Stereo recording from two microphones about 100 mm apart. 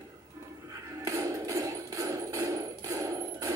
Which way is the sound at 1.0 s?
30° right (ahead or behind).